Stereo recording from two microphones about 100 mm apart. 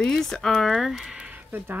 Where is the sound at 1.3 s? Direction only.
20° right (ahead or behind).